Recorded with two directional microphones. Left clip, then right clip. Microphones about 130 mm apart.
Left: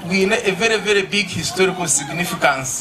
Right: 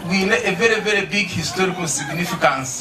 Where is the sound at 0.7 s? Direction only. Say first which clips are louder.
Left 1 dB; 40° left (ahead or behind).